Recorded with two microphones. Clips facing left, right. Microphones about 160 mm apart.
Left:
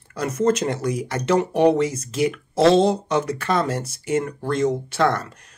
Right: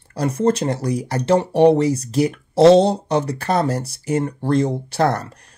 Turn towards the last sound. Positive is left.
turn(degrees=-35)  # may be behind; listen again after turning